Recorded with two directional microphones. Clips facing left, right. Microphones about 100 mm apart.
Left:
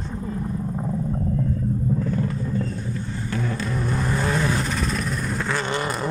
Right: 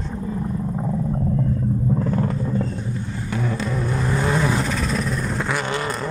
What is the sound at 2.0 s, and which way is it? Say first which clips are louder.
Vehicle: right 3 dB; 50° right (ahead or behind).